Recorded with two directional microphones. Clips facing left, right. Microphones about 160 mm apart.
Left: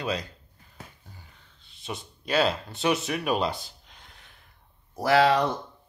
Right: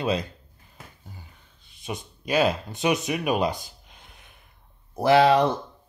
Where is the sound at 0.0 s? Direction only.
25° right (ahead or behind).